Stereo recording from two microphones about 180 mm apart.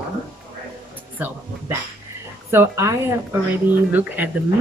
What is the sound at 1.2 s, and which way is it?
Speech, 10° right (ahead or behind).